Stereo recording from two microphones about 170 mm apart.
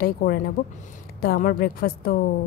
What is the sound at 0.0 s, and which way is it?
A woman's voice, 60° left (ahead or behind).